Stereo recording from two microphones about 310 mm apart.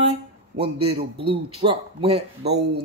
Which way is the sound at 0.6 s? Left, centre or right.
Centre.